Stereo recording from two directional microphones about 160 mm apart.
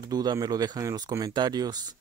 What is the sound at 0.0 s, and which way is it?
Speech, 25° right (ahead or behind).